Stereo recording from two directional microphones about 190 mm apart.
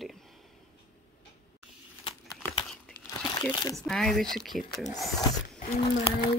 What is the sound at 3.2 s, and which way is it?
Crumpling, 20° left (ahead or behind).